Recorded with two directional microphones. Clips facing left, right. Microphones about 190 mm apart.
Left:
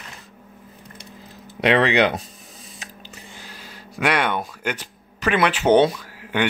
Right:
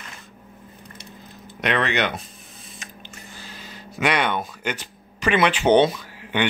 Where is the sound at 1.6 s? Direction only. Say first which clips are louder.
Left 6 dB; 30° left (ahead or behind).